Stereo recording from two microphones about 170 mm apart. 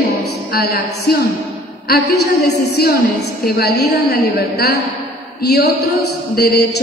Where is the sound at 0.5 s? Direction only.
65° left (ahead or behind).